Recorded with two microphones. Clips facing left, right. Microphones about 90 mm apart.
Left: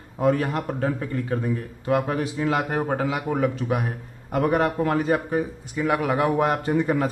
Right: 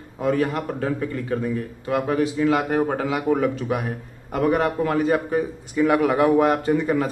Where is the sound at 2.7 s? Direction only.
15° left (ahead or behind).